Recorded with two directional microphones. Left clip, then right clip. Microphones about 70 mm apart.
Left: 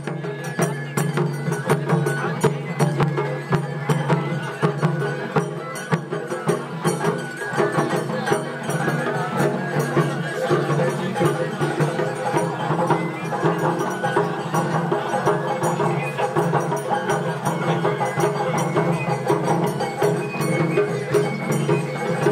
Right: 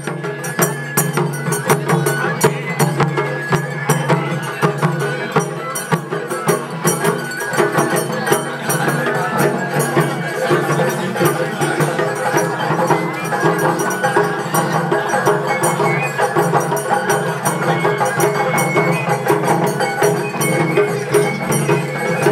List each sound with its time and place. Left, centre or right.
0.6 s music: right
1.7 s music: right
6.4 s music: right
9.4 s music: centre
17.8 s music: centre
21.6 s music: centre